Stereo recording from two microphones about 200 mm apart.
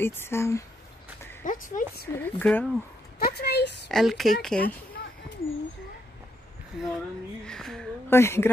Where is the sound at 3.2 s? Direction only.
55° left (ahead or behind).